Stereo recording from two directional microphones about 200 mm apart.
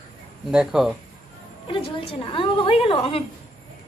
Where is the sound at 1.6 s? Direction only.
25° left (ahead or behind).